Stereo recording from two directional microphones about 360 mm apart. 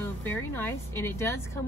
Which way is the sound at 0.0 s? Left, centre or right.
Centre.